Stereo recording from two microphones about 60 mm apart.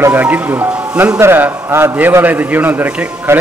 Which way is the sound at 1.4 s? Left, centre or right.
Right.